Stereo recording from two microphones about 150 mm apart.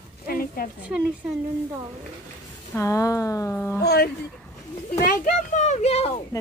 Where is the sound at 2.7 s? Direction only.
20° left (ahead or behind).